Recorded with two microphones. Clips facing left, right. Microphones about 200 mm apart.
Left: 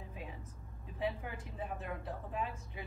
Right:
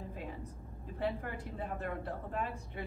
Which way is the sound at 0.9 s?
Centre (ahead or behind).